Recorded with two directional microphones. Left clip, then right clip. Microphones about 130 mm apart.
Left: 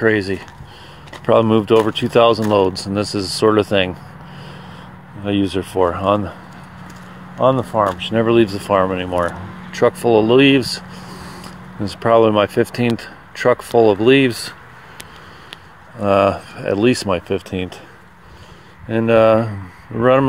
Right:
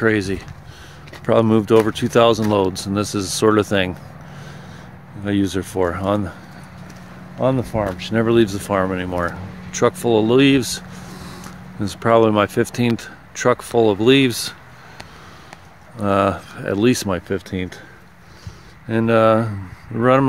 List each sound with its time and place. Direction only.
0.0 s speech: 20° right (ahead or behind)
5.2 s speech: 15° right (ahead or behind)
7.3 s speech: 20° right (ahead or behind)
16.0 s speech: 15° right (ahead or behind)
19.0 s speech: 10° right (ahead or behind)